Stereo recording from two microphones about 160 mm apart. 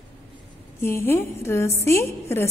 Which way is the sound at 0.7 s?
15° left (ahead or behind).